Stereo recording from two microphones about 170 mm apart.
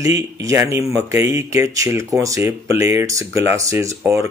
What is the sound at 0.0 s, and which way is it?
Speech, 20° right (ahead or behind).